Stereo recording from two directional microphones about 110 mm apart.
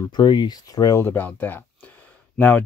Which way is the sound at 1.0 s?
15° left (ahead or behind).